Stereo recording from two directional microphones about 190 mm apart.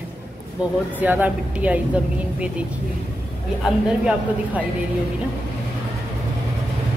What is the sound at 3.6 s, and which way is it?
Speech, 5° right (ahead or behind).